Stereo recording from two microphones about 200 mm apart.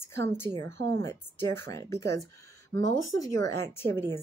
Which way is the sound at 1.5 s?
15° left (ahead or behind).